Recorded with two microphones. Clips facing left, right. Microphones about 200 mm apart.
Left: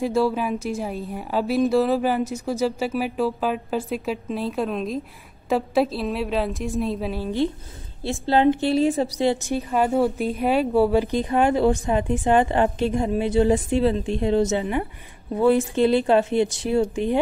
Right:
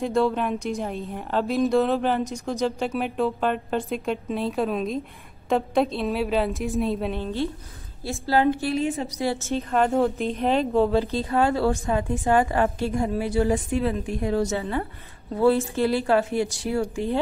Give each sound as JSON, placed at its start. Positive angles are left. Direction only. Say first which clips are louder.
{"t": 0.0, "sound": "a woman's voice", "louder": "left 1 dB", "side_deg": 5}
{"t": 8.0, "sound": "a woman's voice", "louder": "left 3 dB", "side_deg": 25}
{"t": 9.2, "sound": "a woman's voice", "louder": "left 1 dB", "side_deg": 15}